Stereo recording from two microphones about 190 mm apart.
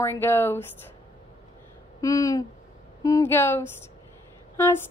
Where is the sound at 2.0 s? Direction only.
15° left (ahead or behind).